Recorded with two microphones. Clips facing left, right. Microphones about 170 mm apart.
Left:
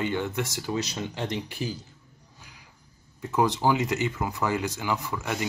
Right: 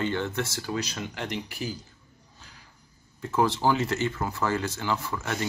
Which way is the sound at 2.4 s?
15° left (ahead or behind).